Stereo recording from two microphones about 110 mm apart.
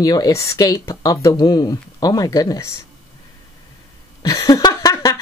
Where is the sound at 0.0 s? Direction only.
35° left (ahead or behind).